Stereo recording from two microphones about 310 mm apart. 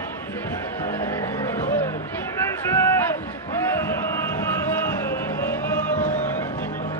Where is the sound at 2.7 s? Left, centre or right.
Centre.